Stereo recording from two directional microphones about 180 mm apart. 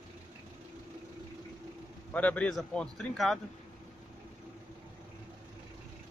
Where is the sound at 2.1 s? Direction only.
10° left (ahead or behind).